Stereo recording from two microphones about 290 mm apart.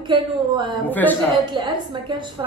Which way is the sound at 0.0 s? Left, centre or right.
Centre.